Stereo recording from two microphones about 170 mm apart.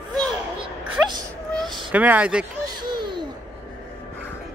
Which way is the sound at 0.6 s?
25° right (ahead or behind).